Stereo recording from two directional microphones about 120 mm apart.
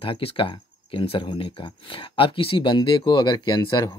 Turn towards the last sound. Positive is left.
turn(degrees=40)  # may be behind; listen again after turning